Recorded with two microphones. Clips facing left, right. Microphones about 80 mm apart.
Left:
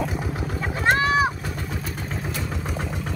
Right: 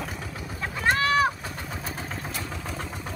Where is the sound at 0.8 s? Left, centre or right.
Left.